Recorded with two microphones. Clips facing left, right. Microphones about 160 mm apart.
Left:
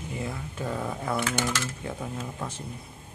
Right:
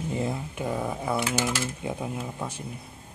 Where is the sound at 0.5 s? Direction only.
15° right (ahead or behind).